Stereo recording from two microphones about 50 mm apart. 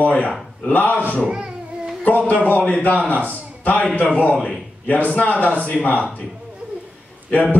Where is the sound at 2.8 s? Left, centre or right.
Left.